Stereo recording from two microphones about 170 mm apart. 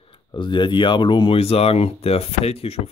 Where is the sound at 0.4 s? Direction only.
25° left (ahead or behind).